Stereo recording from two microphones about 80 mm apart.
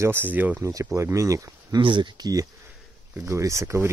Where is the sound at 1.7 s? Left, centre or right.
Right.